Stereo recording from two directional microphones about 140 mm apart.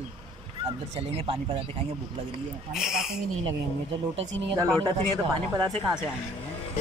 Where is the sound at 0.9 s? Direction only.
40° right (ahead or behind).